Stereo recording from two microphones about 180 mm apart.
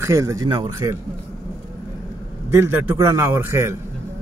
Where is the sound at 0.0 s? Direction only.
15° right (ahead or behind).